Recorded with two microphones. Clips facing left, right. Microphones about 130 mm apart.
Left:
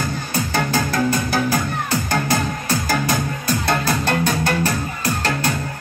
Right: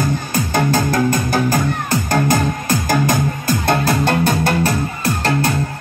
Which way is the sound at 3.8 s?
45° right (ahead or behind).